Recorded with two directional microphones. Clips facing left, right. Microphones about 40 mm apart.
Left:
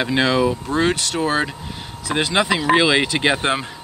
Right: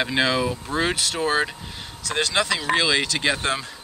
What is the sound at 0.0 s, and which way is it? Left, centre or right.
Speech, centre.